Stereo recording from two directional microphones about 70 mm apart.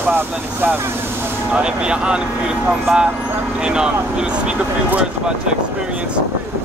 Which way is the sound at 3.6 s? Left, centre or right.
Centre.